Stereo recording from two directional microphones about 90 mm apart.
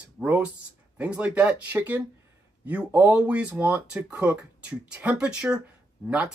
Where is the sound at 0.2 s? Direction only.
15° right (ahead or behind).